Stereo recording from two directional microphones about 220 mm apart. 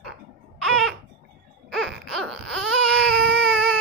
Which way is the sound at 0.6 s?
Centre (ahead or behind).